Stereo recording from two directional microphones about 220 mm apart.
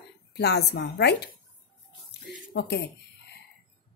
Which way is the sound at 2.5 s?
50° left (ahead or behind).